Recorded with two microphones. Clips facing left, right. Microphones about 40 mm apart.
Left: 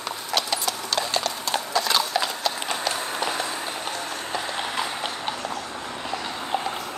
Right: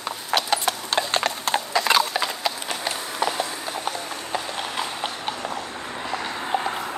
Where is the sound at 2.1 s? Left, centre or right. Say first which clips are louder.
Even; centre.